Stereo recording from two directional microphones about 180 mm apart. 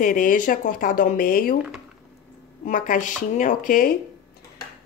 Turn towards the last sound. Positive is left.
turn(degrees=50)  # may be behind; listen again after turning